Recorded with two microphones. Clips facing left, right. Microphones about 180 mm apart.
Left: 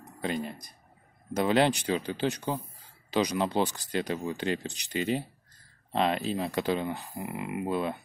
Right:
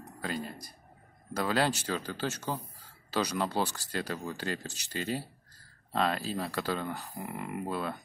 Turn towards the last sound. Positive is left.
turn(degrees=5)  # may be behind; listen again after turning